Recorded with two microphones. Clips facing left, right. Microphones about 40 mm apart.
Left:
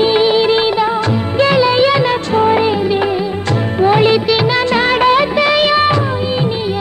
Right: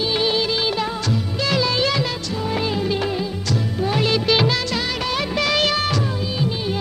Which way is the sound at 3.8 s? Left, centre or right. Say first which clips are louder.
Left 11 dB; left.